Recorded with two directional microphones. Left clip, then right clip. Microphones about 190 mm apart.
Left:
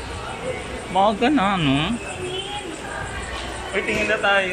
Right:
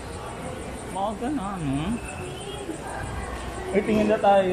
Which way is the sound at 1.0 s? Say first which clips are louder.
Left 10 dB; 20° left (ahead or behind).